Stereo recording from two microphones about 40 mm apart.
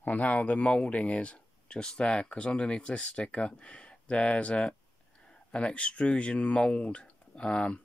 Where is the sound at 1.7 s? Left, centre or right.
Centre.